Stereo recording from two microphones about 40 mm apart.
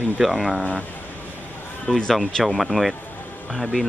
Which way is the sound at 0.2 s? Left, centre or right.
Centre.